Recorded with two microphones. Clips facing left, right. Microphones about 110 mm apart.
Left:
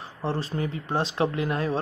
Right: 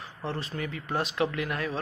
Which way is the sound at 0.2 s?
35° left (ahead or behind).